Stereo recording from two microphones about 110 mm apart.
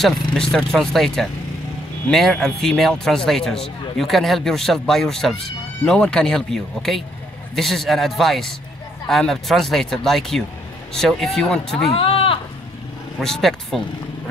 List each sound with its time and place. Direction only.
0.0 s speech: 5° left (ahead or behind)
11.9 s speech: 55° left (ahead or behind)
13.2 s speech: 5° left (ahead or behind)